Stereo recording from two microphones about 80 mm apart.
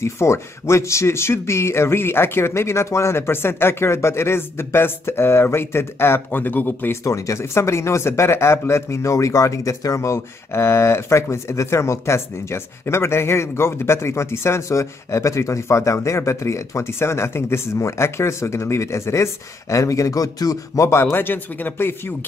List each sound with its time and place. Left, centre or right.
0.0 s speech: left
7.1 s speech: left